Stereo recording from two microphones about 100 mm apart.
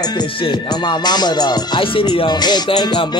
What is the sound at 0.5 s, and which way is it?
Music, 45° left (ahead or behind).